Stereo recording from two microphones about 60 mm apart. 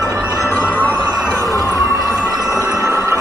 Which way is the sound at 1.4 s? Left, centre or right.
Right.